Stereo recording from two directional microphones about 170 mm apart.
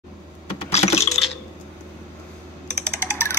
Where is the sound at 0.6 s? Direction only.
40° left (ahead or behind).